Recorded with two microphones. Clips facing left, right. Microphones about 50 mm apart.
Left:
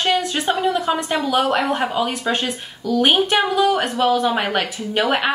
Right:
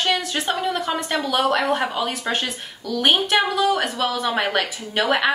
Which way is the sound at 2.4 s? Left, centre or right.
Centre.